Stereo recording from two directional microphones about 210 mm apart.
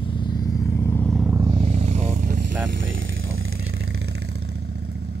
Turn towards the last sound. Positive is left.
turn(degrees=-50)  # may be behind; listen again after turning